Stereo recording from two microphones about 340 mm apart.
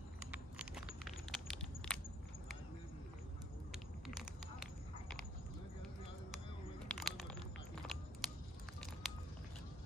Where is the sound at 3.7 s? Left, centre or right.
Centre.